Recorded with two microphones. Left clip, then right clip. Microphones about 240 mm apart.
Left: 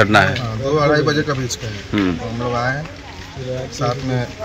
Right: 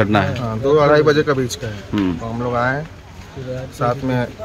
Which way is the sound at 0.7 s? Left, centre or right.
Right.